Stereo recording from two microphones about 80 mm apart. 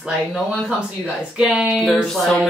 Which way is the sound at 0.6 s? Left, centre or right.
Centre.